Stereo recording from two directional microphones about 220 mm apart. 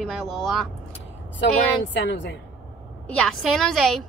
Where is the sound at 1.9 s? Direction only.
55° left (ahead or behind).